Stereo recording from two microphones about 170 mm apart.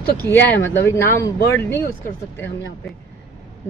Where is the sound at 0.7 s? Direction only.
15° left (ahead or behind).